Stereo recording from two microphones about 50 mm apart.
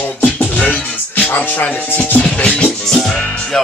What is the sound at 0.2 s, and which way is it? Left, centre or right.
Music, left.